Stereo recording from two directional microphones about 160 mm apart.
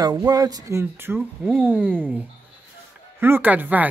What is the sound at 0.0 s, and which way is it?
Speech, 25° right (ahead or behind).